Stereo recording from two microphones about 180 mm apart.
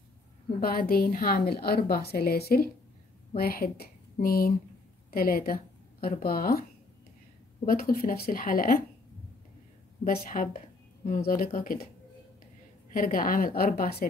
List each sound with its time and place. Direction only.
0.6 s a woman's voice: 55° left (ahead or behind)
7.6 s speech: 55° left (ahead or behind)
10.0 s speech: 50° left (ahead or behind)
12.9 s a woman's voice: 50° left (ahead or behind)